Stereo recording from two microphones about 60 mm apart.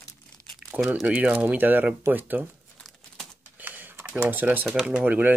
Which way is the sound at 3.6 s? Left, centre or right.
Right.